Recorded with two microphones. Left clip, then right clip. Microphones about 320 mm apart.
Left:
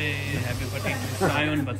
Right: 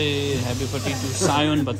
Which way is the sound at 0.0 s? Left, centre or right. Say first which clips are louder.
Right 6 dB; centre.